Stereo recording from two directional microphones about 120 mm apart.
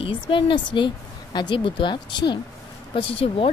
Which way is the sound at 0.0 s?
45° left (ahead or behind).